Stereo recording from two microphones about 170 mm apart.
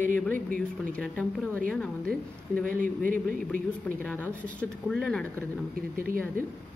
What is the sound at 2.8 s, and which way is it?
Speech, 50° right (ahead or behind).